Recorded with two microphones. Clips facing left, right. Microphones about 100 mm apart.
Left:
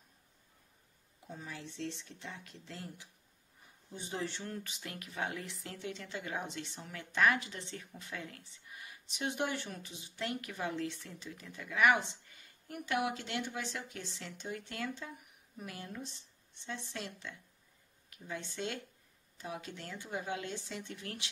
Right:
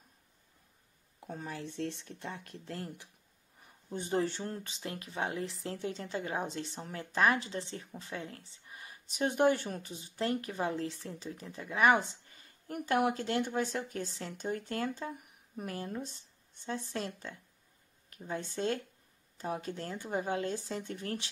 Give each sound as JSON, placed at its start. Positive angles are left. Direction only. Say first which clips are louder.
{"t": 1.2, "sound": "speech", "louder": "right 5 dB", "side_deg": -50}